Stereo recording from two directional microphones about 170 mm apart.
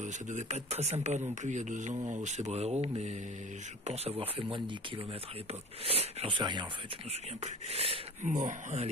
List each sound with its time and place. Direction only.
0.0 s speech: 45° right (ahead or behind)